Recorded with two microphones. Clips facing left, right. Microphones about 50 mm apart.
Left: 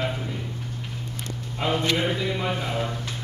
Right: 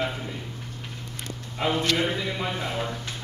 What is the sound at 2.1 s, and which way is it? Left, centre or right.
Speech, centre.